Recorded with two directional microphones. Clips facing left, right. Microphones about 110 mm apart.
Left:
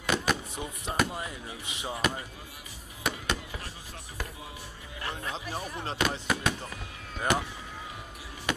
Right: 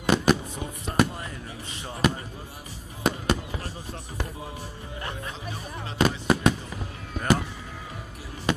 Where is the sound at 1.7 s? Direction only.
10° left (ahead or behind).